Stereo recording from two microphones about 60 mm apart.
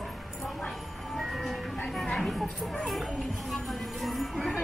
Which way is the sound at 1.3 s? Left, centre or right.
Centre.